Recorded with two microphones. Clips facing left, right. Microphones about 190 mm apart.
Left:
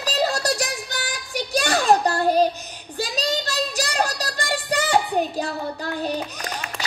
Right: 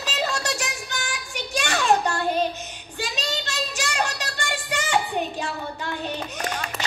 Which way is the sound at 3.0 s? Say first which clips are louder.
Left 5 dB; 35° left (ahead or behind).